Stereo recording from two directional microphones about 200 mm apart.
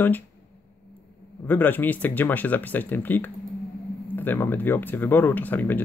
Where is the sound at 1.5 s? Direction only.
10° left (ahead or behind).